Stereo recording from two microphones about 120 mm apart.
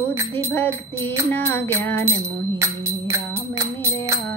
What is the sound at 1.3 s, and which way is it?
Music, 20° left (ahead or behind).